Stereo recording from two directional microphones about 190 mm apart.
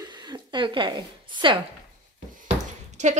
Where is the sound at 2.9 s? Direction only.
40° right (ahead or behind).